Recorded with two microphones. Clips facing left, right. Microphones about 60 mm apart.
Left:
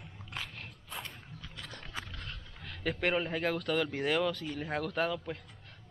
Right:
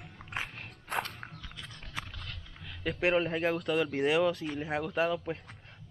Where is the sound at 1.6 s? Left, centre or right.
Left.